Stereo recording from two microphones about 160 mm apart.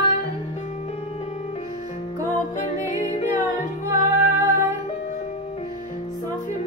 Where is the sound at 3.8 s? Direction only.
20° right (ahead or behind).